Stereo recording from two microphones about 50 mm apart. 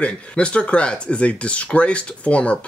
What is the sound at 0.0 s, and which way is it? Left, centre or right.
Speech, left.